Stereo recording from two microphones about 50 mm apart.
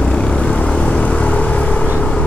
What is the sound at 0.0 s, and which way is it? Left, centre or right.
Vehicle, left.